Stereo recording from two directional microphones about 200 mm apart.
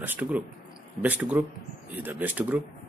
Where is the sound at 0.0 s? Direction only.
10° right (ahead or behind).